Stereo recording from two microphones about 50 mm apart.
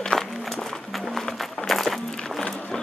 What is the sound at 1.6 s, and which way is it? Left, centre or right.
Music, centre.